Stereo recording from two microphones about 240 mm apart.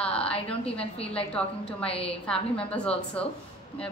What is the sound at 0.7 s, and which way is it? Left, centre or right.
Speech, left.